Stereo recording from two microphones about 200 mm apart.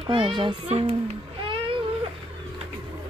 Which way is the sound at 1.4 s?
25° right (ahead or behind).